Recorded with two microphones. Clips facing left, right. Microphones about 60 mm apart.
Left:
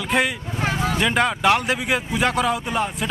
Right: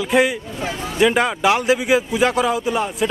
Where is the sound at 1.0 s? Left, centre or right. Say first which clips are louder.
Right 5 dB; centre.